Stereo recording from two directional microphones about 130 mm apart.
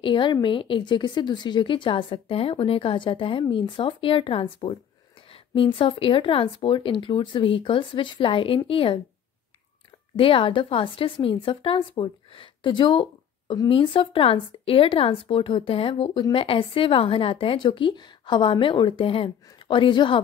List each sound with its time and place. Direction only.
0.0 s a woman's voice: 40° left (ahead or behind)
10.1 s a woman's voice: 45° left (ahead or behind)